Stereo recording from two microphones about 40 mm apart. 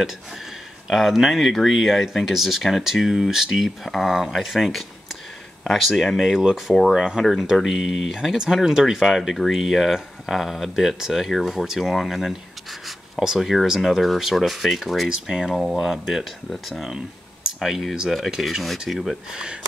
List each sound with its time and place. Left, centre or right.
0.8 s speech: centre
7.5 s speech: centre
15.2 s speech: centre
15.5 s speech: centre
15.8 s speech: centre